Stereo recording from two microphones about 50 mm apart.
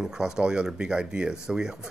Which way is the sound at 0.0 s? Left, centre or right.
Centre.